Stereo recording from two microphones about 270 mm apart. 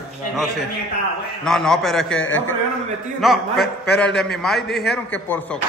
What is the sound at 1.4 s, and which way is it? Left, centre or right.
Speech, centre.